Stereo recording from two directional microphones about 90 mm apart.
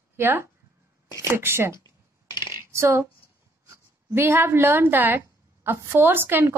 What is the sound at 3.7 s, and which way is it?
Speech, 25° right (ahead or behind).